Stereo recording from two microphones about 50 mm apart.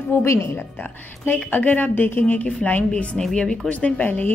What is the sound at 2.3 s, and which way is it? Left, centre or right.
Speech, left.